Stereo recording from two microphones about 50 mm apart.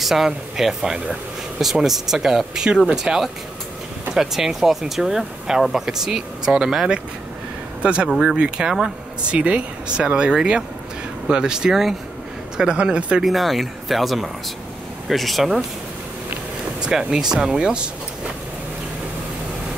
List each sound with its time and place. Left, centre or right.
0.0 s speech: centre
13.2 s speech: centre
16.8 s speech: centre